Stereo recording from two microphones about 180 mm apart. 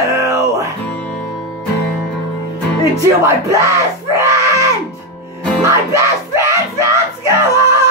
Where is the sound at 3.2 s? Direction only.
15° right (ahead or behind).